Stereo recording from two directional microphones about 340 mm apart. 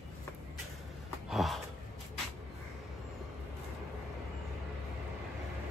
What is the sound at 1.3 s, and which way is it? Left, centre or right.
Gasp, centre.